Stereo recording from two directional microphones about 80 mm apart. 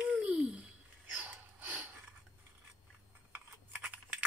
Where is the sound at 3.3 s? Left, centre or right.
Centre.